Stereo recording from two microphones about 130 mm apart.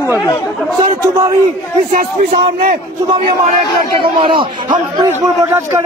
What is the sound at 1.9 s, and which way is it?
Speech, 90° right.